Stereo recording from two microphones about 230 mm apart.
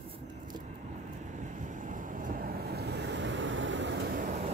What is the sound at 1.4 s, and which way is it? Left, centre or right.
Waves, right.